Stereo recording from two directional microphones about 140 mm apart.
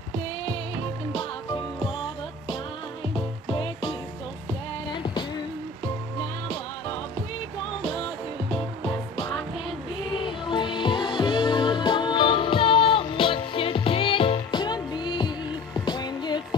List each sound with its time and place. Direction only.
3.5 s music: 35° left (ahead or behind)
7.8 s music: 40° left (ahead or behind)
10.1 s music: 35° left (ahead or behind)